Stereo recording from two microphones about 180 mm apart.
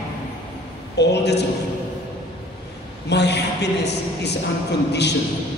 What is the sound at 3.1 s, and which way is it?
A woman's voice, 70° left (ahead or behind).